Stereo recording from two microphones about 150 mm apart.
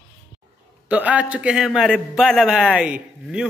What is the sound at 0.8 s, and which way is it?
A man's voice, 10° right (ahead or behind).